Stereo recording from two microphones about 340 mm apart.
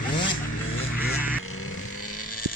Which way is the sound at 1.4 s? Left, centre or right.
Left.